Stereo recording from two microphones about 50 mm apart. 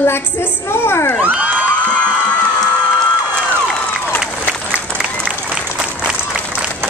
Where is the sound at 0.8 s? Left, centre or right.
Left.